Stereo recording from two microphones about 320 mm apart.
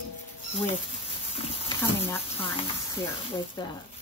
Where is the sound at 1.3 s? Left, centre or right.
Centre.